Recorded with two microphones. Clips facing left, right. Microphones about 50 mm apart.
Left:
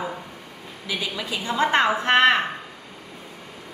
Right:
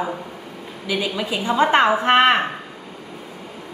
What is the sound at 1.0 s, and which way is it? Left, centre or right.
A woman's voice, right.